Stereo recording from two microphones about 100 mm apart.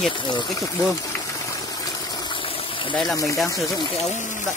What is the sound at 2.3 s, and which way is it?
Engine, 60° left (ahead or behind).